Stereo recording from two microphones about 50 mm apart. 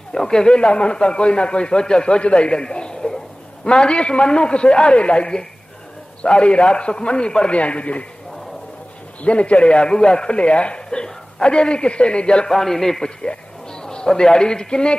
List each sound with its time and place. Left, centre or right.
0.1 s a man's voice: centre
9.2 s a man's voice: left
12.5 s a man's voice: centre